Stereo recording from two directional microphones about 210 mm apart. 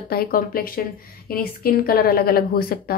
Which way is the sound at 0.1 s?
45° left (ahead or behind).